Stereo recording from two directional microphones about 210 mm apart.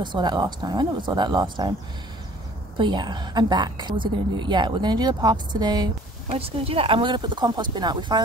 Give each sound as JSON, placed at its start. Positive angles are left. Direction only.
{"t": 0.0, "sound": "a woman's voice", "side_deg": -20}
{"t": 2.8, "sound": "a woman's voice", "side_deg": -20}